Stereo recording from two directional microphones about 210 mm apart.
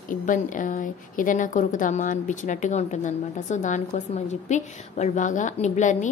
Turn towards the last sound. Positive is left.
turn(degrees=35)  # may be behind; listen again after turning